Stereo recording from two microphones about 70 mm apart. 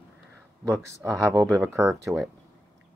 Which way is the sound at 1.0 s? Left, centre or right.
Right.